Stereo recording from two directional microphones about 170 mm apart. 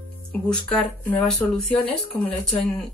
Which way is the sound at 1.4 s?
10° left (ahead or behind).